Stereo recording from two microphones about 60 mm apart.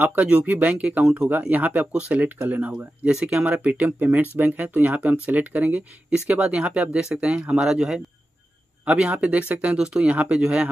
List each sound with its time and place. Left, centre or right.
0.0 s speech: right
3.1 s speech: centre
3.4 s speech: right
9.8 s speech: centre